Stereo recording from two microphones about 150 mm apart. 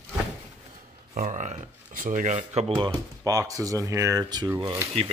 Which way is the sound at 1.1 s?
50° right (ahead or behind).